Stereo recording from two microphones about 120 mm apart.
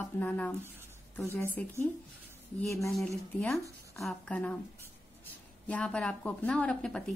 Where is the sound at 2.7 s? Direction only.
25° left (ahead or behind).